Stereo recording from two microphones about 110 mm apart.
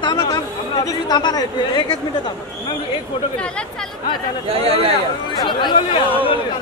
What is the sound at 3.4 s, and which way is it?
Speech, 10° left (ahead or behind).